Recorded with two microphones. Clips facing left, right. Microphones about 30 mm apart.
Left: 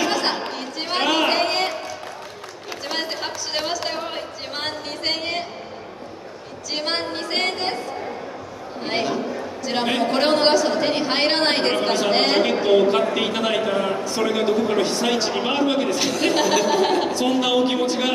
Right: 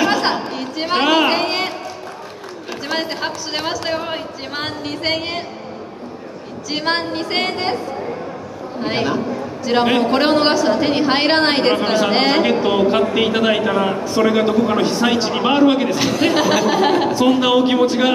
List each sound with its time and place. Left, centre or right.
0.0 s chatter: centre
2.9 s a sound: centre
3.2 s a man's voice: centre
6.7 s a man's voice: centre
8.8 s a man's voice: centre